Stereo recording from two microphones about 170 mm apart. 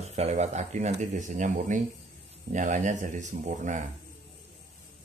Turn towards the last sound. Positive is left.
turn(degrees=-45)  # may be behind; listen again after turning